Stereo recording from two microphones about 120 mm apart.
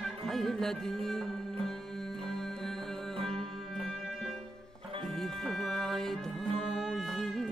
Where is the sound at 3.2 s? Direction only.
50° right (ahead or behind).